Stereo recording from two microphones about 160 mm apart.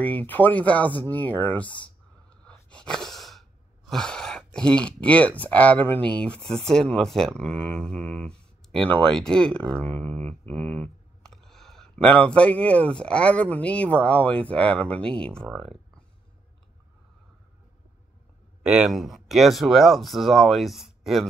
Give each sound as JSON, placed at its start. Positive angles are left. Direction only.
{"t": 0.0, "sound": "speech", "side_deg": 10}
{"t": 1.1, "sound": "a sound", "side_deg": 10}
{"t": 2.7, "sound": "sigh", "side_deg": 5}
{"t": 15.2, "sound": "speech", "side_deg": 5}
{"t": 18.6, "sound": "speech", "side_deg": -5}